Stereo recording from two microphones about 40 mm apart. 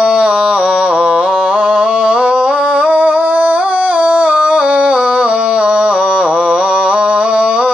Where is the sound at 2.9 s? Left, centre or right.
Right.